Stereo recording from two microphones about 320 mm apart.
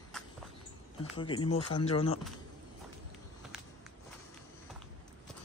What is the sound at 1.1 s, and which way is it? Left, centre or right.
Speech, centre.